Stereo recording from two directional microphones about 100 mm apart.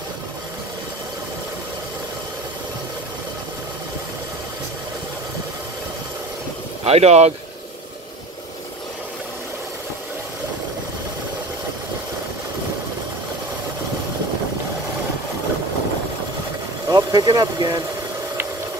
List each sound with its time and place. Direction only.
6.8 s speech: 90° right
16.9 s speech: 45° right (ahead or behind)